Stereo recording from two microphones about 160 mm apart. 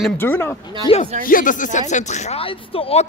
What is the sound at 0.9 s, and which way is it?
Speech, 30° left (ahead or behind).